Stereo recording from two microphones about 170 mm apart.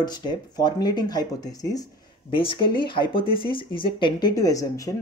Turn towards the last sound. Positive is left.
turn(degrees=20)  # may be behind; listen again after turning